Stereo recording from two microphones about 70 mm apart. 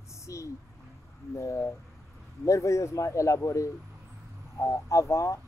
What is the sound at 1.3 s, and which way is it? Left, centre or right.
Speech, left.